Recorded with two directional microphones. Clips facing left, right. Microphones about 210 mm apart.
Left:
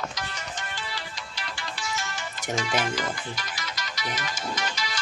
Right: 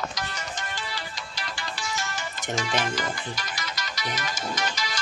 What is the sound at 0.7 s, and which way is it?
Music, 40° right (ahead or behind).